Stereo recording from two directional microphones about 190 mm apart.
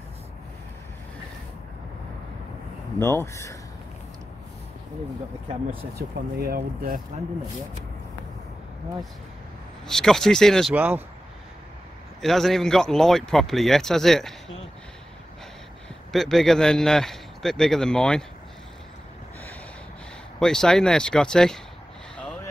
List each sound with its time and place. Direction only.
3.0 s speech: 15° left (ahead or behind)
5.9 s speech: 55° right (ahead or behind)
9.8 s a man's voice: centre (ahead or behind)
10.7 s speech: 10° right (ahead or behind)
12.2 s a man's voice: centre (ahead or behind)
16.1 s a man's voice: centre (ahead or behind)
20.3 s a man's voice: 5° left (ahead or behind)
22.1 s vehicle: 5° left (ahead or behind)